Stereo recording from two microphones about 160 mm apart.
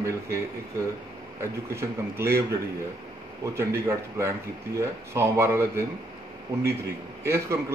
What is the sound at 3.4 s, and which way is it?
Speech, 15° right (ahead or behind).